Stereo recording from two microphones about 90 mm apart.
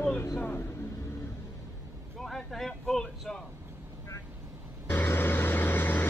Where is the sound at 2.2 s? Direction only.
5° left (ahead or behind).